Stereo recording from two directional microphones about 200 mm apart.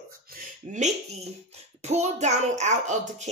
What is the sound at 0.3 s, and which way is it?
Speech, 40° right (ahead or behind).